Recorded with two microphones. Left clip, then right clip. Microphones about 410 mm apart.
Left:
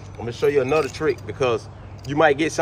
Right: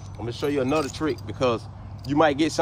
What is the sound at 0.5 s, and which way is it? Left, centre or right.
Speech, centre.